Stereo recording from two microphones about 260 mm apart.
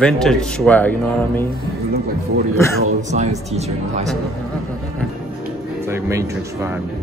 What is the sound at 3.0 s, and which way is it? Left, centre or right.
Speech, right.